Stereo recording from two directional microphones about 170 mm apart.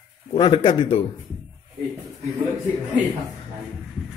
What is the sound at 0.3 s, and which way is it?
Speech, 30° left (ahead or behind).